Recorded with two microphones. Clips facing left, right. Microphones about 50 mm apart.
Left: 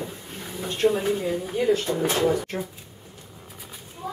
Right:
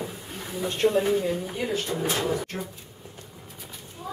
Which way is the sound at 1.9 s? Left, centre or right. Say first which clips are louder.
Left 3 dB; left.